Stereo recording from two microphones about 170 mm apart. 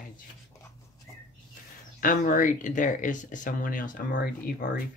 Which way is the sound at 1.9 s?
50° left (ahead or behind).